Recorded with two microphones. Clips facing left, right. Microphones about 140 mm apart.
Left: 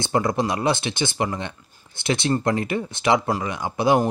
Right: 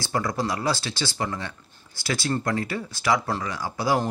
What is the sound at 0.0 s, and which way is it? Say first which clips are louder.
Speech: left 5 dB; 25° left (ahead or behind).